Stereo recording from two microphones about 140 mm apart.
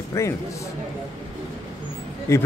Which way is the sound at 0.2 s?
20° left (ahead or behind).